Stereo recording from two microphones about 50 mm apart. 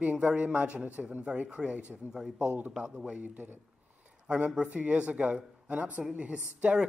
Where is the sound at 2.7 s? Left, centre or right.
Centre; by 3.6 s right.